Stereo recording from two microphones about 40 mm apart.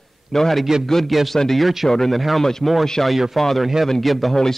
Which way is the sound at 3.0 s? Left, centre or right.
Centre.